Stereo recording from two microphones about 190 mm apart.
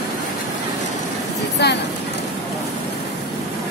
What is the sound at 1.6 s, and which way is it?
Speech, 60° left (ahead or behind).